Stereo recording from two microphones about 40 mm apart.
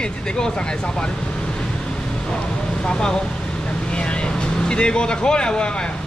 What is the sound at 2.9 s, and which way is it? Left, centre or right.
Speech, centre.